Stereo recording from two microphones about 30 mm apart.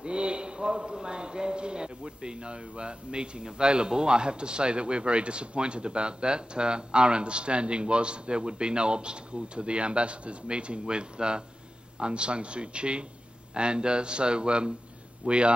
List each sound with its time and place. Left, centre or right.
0.0 s a man's voice: right